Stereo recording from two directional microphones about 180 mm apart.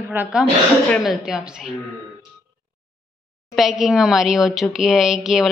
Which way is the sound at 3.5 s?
Centre (ahead or behind).